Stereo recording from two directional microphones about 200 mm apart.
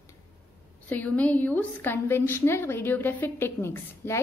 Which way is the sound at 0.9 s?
10° left (ahead or behind).